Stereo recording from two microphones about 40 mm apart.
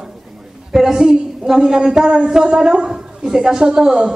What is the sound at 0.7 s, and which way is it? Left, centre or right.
A woman's voice, centre.